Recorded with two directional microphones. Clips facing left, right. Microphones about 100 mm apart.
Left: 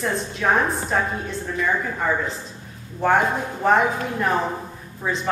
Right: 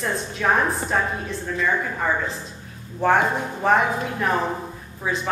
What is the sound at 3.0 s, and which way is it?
A woman's voice, centre (ahead or behind).